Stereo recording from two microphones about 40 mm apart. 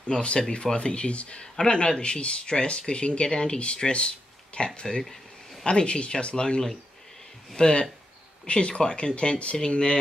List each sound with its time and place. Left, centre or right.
0.1 s speech: left